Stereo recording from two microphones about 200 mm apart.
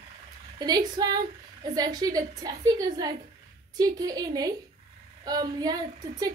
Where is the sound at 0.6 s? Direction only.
20° right (ahead or behind).